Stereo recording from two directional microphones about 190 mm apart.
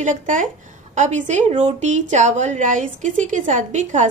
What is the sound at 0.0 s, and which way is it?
A woman's voice, 40° right (ahead or behind).